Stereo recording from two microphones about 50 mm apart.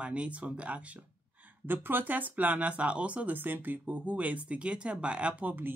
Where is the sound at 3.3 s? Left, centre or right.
Right.